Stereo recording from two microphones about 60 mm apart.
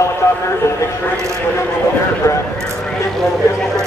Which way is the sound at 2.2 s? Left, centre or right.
Left.